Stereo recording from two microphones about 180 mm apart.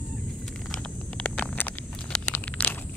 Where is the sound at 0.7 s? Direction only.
5° left (ahead or behind).